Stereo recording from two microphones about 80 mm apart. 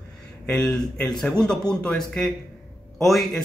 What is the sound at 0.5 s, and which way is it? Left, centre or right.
A man's voice, centre.